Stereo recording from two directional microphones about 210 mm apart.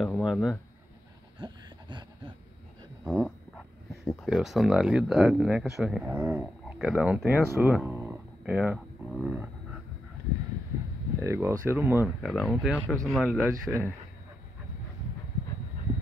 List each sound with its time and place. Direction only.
0.0 s speech: centre (ahead or behind)
1.4 s a sound: 20° right (ahead or behind)
3.1 s speech: 5° left (ahead or behind)
11.1 s speech: 10° right (ahead or behind)
12.3 s speech: centre (ahead or behind)